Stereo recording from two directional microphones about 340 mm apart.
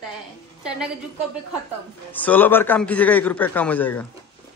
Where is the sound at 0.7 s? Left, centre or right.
Centre.